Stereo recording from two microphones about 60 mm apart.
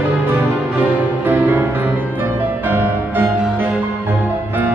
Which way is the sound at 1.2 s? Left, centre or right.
Right.